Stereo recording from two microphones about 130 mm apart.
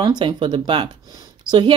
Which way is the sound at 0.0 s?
35° right (ahead or behind).